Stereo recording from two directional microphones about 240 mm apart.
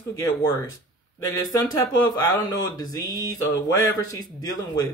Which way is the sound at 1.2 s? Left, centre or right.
Centre.